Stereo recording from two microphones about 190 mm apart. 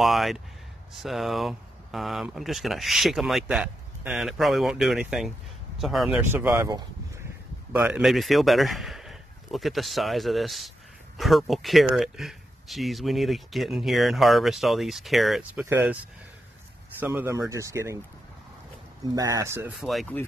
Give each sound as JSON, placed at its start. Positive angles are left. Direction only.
{"t": 0.0, "sound": "a man's voice", "side_deg": 0}
{"t": 19.0, "sound": "speech", "side_deg": -20}
{"t": 19.8, "sound": "speech", "side_deg": 0}